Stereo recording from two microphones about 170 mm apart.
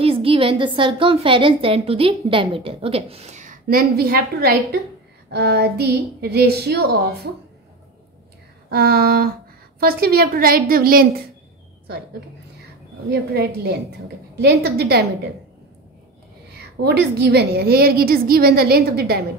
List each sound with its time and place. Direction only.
0.0 s a woman's voice: 30° right (ahead or behind)
3.6 s a woman's voice: 65° right (ahead or behind)
5.3 s a woman's voice: 75° right (ahead or behind)
8.6 s a woman's voice: 65° right (ahead or behind)
13.1 s a woman's voice: 70° right (ahead or behind)
16.5 s a woman's voice: 75° right (ahead or behind)